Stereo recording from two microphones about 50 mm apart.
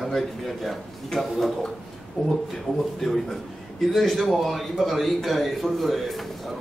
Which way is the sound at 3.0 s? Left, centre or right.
Centre.